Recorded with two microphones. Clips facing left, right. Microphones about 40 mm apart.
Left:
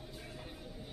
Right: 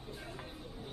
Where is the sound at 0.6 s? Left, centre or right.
Right.